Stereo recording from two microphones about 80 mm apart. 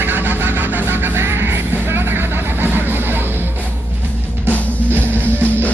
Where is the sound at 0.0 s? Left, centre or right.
Right.